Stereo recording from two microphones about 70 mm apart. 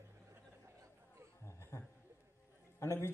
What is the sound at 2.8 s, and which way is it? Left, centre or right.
Speech, left.